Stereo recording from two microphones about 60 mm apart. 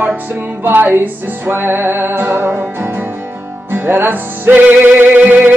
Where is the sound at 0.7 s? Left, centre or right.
Right.